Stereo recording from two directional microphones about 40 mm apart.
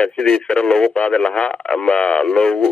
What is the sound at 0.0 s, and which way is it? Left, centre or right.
Speech, left.